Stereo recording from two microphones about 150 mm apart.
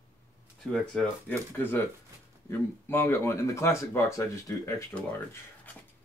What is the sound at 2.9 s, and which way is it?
Speech, 15° left (ahead or behind).